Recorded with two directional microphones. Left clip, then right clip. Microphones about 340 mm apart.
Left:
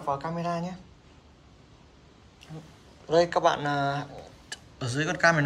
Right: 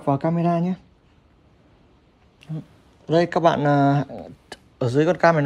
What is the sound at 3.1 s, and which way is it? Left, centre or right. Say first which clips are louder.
Speech: right 4 dB; centre.